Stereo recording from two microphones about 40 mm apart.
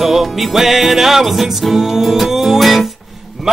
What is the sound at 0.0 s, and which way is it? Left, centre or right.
Music, centre.